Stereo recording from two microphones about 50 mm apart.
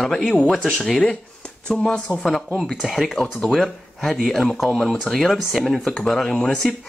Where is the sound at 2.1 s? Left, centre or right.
Centre.